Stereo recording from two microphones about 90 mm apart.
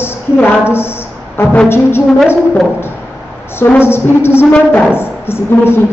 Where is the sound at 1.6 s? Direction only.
25° left (ahead or behind).